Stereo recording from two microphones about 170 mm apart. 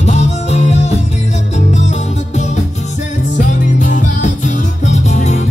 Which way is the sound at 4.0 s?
45° left (ahead or behind).